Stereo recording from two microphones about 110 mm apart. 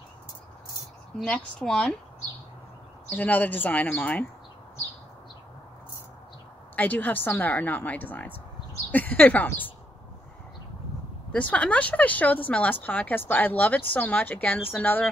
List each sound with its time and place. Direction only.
1.2 s speech: 10° left (ahead or behind)
3.1 s speech: 15° left (ahead or behind)
6.7 s speech: 15° left (ahead or behind)
11.3 s speech: 10° left (ahead or behind)